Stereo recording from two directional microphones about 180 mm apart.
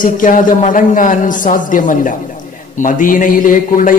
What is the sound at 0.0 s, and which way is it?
A man's voice, 45° left (ahead or behind).